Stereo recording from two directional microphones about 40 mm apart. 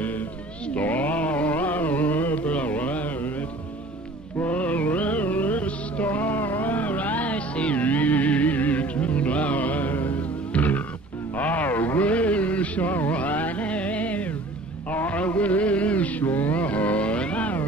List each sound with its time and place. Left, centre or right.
0.7 s a sound: left
4.5 s music: left
14.9 s mantra: left